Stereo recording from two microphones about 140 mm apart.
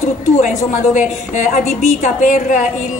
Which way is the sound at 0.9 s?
60° left (ahead or behind).